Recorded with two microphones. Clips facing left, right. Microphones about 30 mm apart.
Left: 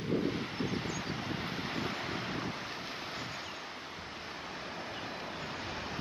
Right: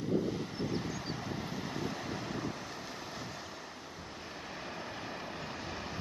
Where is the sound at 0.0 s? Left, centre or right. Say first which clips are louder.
Even; left.